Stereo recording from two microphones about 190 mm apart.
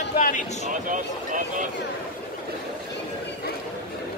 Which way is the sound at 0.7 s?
45° right (ahead or behind).